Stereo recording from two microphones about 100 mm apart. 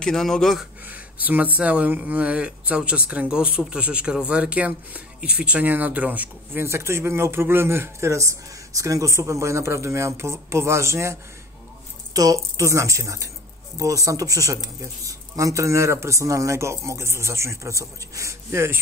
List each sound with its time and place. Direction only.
0.0 s speech: 5° left (ahead or behind)
0.8 s speech: 15° right (ahead or behind)
6.6 s a man's voice: 25° right (ahead or behind)